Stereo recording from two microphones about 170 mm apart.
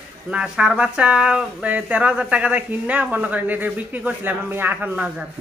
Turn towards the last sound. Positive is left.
turn(degrees=-10)  # may be behind; listen again after turning